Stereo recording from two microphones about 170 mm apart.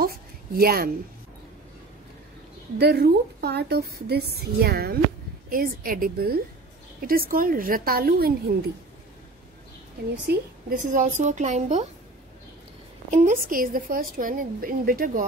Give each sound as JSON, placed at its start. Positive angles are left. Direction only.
{"t": 0.0, "sound": "a sound", "side_deg": -60}
{"t": 2.8, "sound": "a woman's voice", "side_deg": -75}
{"t": 10.3, "sound": "a woman's voice", "side_deg": -70}
{"t": 10.7, "sound": "a woman's voice", "side_deg": -50}
{"t": 13.1, "sound": "a woman's voice", "side_deg": -50}